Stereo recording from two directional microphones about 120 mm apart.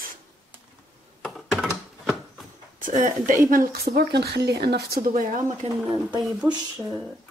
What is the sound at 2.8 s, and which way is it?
Speech, 90° right.